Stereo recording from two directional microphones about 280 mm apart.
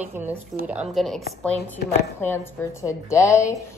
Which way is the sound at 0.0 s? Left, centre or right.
Centre.